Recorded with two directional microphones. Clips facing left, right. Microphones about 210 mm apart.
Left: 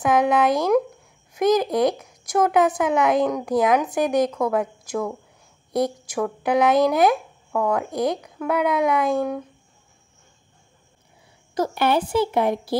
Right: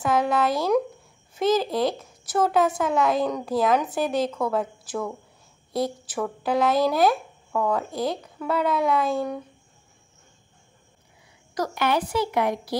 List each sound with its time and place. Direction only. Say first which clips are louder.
0.0 s speech: left 4 dB; 15° left (ahead or behind)
11.5 s speech: left 3 dB; 30° left (ahead or behind)